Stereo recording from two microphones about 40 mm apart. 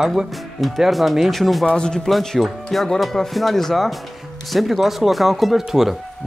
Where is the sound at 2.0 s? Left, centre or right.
Centre.